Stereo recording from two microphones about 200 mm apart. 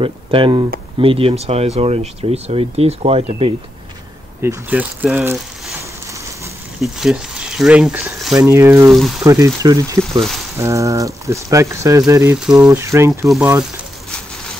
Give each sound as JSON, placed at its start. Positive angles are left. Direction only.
{"t": 0.0, "sound": "speech", "side_deg": -25}
{"t": 4.4, "sound": "speech", "side_deg": -10}
{"t": 6.8, "sound": "speech", "side_deg": 0}
{"t": 8.9, "sound": "speech", "side_deg": 0}
{"t": 9.2, "sound": "speech", "side_deg": -15}